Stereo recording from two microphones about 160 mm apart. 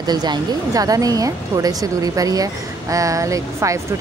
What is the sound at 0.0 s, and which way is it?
Speech, 25° right (ahead or behind).